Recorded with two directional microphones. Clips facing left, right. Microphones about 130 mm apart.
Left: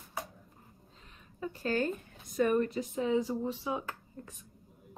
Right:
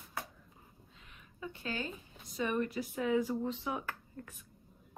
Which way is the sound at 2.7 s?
30° left (ahead or behind).